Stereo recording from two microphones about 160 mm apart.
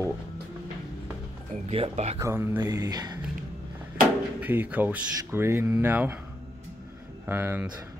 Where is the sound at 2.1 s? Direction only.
15° right (ahead or behind).